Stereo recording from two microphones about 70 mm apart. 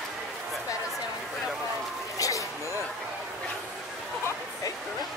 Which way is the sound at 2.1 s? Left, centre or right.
Left.